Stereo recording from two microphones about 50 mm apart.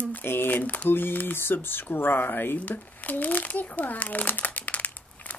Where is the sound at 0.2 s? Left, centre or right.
Left.